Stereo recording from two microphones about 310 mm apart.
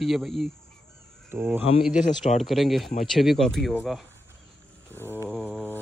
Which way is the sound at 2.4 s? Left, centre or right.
Centre.